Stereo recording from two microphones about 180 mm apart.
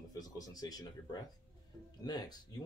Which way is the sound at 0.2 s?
20° left (ahead or behind).